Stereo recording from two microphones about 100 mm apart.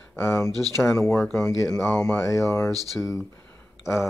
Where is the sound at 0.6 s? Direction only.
Centre (ahead or behind).